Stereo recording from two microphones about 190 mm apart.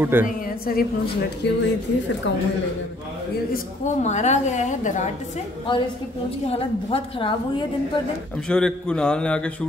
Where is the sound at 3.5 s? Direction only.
40° left (ahead or behind).